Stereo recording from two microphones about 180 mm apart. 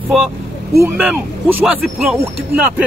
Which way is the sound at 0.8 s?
5° right (ahead or behind).